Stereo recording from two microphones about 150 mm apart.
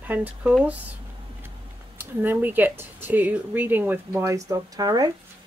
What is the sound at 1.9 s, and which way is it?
Speech, 15° right (ahead or behind).